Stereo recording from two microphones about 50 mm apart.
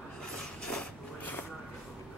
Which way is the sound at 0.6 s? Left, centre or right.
Centre.